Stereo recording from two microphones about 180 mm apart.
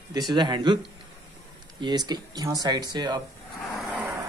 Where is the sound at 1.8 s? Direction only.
25° right (ahead or behind).